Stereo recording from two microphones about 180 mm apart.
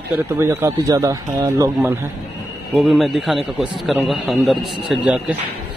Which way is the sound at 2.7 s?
Centre (ahead or behind).